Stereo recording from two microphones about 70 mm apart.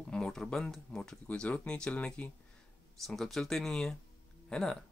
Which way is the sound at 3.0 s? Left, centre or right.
Centre.